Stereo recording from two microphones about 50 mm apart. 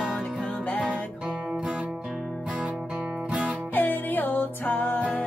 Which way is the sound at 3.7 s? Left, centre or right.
Left.